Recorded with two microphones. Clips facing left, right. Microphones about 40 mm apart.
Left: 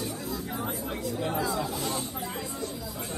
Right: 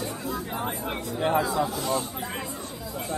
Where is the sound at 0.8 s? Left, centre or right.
Right.